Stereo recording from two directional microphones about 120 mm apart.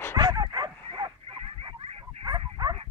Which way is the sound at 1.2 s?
50° right (ahead or behind).